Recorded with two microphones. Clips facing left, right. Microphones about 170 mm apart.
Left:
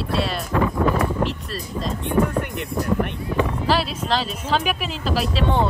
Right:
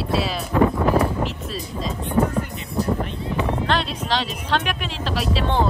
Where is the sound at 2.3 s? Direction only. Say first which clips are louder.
Left 1 dB; 65° left (ahead or behind).